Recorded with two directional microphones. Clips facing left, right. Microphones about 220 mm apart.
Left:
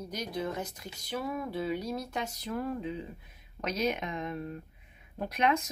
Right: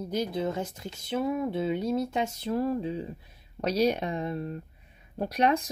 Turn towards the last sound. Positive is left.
turn(degrees=-35)  # may be behind; listen again after turning